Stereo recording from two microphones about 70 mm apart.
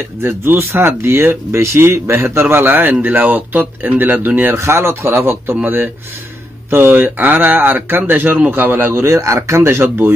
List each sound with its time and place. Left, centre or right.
0.2 s speech: right
9.0 s speech: right